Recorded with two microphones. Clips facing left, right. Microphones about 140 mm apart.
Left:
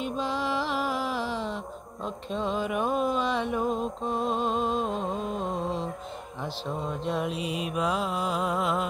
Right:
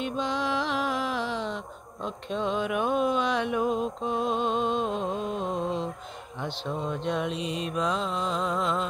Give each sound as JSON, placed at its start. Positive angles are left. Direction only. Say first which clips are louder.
{"t": 0.0, "sound": "music", "louder": "right 1 dB", "side_deg": 0}
{"t": 6.4, "sound": "mantra", "louder": "right 1 dB", "side_deg": 0}